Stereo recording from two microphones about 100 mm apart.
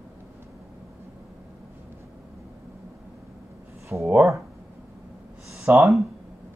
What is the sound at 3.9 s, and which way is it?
Speech, 20° right (ahead or behind).